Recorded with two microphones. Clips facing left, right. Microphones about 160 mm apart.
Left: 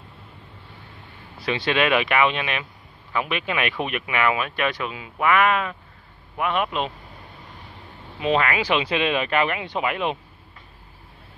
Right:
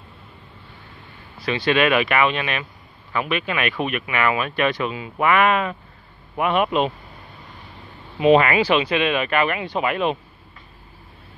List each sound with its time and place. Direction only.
1.4 s a man's voice: 20° left (ahead or behind); by 6.9 s 10° right (ahead or behind)
8.2 s a man's voice: 10° right (ahead or behind)
8.5 s speech: 15° left (ahead or behind)
8.8 s speech: 30° left (ahead or behind)